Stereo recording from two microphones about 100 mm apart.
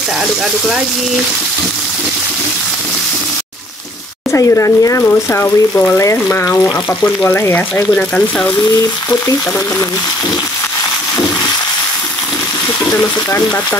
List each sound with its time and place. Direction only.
4.3 s speech: 30° left (ahead or behind)
7.9 s speech: 10° left (ahead or behind)
12.9 s speech: 20° left (ahead or behind)